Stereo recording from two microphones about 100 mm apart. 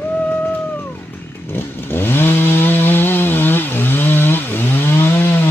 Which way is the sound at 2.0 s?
20° left (ahead or behind).